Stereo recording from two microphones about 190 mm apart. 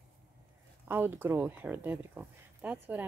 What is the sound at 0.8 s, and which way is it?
Speech, 10° right (ahead or behind).